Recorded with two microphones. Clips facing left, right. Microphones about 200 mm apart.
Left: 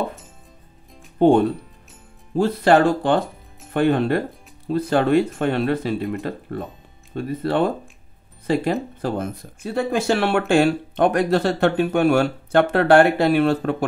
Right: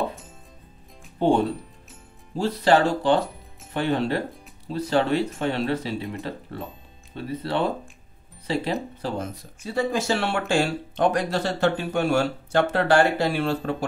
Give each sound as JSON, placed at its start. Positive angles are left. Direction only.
{"t": 1.2, "sound": "speech", "side_deg": 50}
{"t": 7.2, "sound": "speech", "side_deg": 50}